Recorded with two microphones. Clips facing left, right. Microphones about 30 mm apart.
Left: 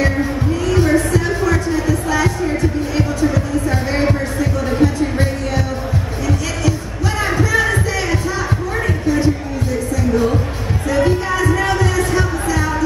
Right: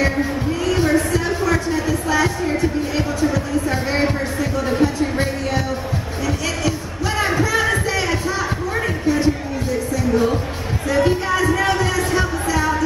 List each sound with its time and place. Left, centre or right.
0.0 s music: centre
7.2 s a sound: centre
10.1 s music: centre